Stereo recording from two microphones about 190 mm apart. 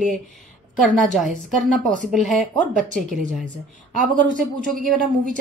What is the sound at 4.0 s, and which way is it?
Speech, 45° right (ahead or behind).